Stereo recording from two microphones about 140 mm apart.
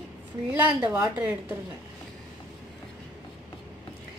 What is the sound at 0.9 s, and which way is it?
Speech, 25° right (ahead or behind).